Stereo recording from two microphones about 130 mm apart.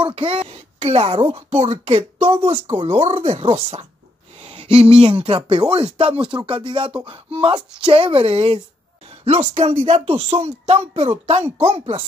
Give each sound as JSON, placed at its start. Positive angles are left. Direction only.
{"t": 0.0, "sound": "speech", "side_deg": -45}
{"t": 4.4, "sound": "a sound", "side_deg": -45}
{"t": 5.0, "sound": "speech", "side_deg": -45}